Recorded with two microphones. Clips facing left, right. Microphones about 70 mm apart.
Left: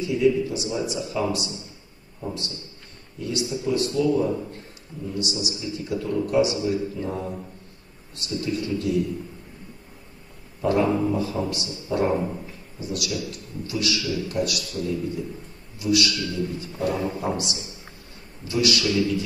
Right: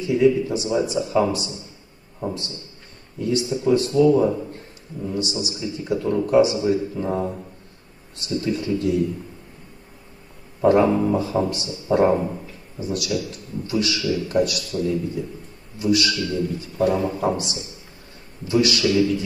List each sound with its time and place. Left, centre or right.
0.0 s a man's voice: right
10.6 s a man's voice: right